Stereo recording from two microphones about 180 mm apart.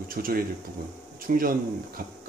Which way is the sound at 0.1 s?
55° right (ahead or behind).